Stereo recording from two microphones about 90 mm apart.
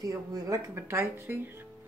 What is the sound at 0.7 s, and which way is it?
Speech, 25° right (ahead or behind).